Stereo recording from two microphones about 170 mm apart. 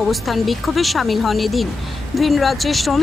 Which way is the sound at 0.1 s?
Centre (ahead or behind).